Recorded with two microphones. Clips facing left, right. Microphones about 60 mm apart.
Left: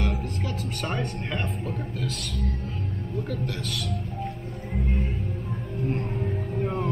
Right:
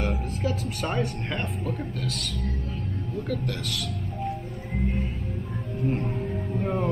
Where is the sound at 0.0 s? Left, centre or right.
Centre.